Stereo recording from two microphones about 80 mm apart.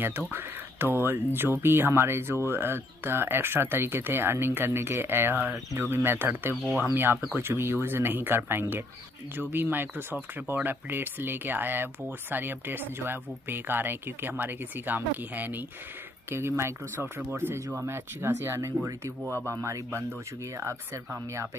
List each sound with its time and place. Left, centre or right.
0.3 s speech: right